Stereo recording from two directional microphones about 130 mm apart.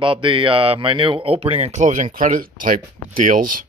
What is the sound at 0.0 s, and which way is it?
A man's voice, 40° right (ahead or behind).